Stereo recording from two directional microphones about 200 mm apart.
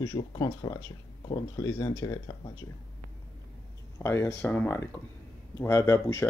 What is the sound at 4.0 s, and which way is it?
Speech, 15° left (ahead or behind).